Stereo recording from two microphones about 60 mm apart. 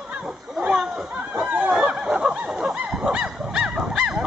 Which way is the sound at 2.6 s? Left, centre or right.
Centre.